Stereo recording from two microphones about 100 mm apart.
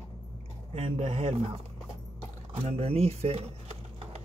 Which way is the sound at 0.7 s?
90° right.